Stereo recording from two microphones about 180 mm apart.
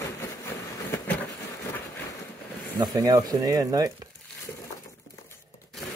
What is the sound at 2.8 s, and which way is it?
Speech, 20° right (ahead or behind).